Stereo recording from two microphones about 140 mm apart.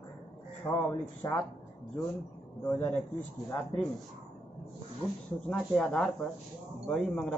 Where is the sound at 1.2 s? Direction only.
20° left (ahead or behind).